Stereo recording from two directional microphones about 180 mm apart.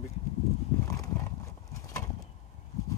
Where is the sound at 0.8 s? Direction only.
20° left (ahead or behind).